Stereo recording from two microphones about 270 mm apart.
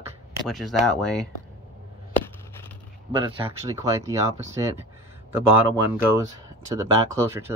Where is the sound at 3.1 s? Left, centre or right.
Centre.